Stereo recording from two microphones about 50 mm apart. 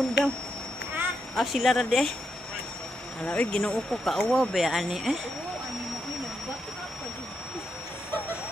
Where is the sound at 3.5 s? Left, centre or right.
Centre.